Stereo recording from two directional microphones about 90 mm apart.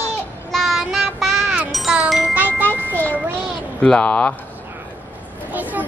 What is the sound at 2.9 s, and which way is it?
Child singing, 20° left (ahead or behind).